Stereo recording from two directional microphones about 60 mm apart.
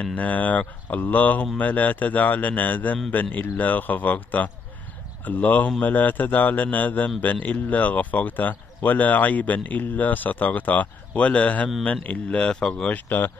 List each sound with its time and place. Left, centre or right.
0.0 s speech: left
12.9 s speech: left